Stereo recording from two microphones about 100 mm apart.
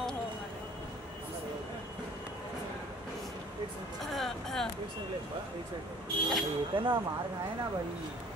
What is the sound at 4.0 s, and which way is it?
Speech, 5° left (ahead or behind).